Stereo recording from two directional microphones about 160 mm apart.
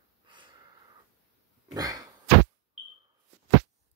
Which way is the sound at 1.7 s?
25° right (ahead or behind).